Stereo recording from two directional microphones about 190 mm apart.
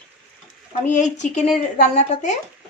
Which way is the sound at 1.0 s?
40° left (ahead or behind).